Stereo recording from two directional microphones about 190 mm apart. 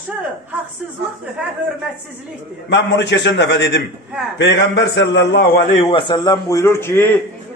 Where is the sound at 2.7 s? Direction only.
70° left (ahead or behind).